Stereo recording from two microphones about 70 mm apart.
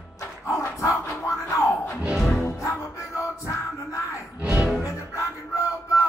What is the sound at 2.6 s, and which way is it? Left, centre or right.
Music, left.